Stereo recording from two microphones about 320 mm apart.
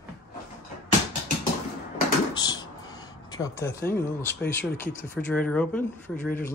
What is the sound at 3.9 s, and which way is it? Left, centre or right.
Speech, centre.